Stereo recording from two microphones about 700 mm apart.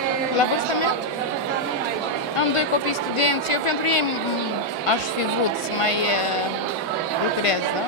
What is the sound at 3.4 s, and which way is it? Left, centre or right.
Speech, left.